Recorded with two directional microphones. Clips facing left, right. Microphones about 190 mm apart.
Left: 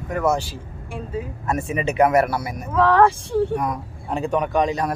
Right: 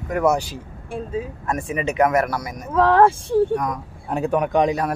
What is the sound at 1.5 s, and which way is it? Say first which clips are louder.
Speech: left 1 dB; 35° left (ahead or behind).